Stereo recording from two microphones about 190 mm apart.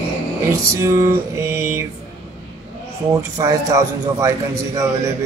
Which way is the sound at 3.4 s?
20° right (ahead or behind).